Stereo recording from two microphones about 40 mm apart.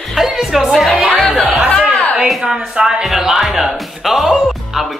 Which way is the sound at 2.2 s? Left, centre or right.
Centre.